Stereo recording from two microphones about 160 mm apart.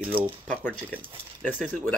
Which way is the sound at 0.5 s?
5° left (ahead or behind).